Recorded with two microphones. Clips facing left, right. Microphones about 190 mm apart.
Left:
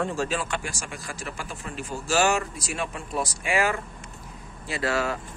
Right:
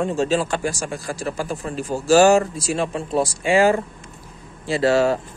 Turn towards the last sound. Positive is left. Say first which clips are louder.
# right 9 dB
turn(degrees=-30)  # may be behind; listen again after turning